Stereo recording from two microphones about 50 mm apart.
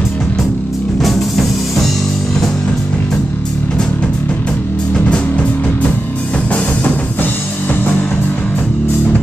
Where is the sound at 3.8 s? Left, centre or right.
Centre.